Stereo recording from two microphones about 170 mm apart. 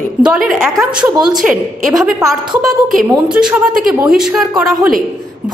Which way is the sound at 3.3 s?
5° right (ahead or behind).